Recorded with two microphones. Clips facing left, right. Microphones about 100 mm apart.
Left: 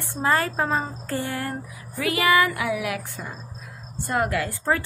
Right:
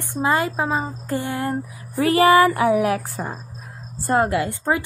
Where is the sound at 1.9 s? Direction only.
35° right (ahead or behind).